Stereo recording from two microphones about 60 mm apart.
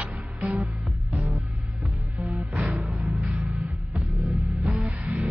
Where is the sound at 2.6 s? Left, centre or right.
Centre.